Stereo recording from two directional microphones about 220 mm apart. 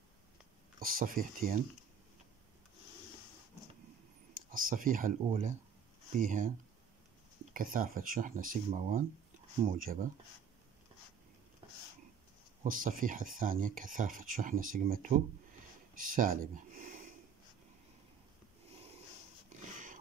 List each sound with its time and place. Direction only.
0.7 s speech: 40° right (ahead or behind)
4.3 s a sound: 40° right (ahead or behind)
5.2 s speech: 30° right (ahead or behind)
7.5 s speech: 40° right (ahead or behind)
12.6 s speech: 40° right (ahead or behind)